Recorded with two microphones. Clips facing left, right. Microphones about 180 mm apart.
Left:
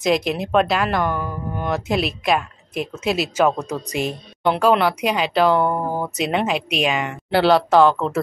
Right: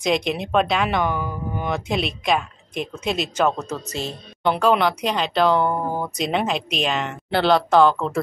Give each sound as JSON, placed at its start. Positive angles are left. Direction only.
{"t": 0.0, "sound": "speech", "side_deg": 0}